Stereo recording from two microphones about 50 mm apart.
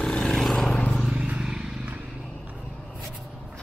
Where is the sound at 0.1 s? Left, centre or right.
Centre.